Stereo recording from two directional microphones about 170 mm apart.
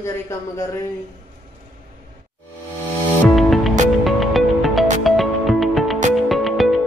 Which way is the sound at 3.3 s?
Centre (ahead or behind).